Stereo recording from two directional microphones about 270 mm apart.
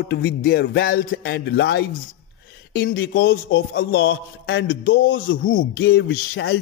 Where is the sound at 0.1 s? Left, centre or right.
Left.